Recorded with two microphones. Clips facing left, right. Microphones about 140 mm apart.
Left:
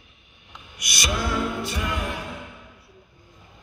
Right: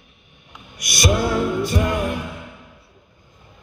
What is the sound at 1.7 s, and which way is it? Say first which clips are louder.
Music: right 8 dB; 45° right (ahead or behind).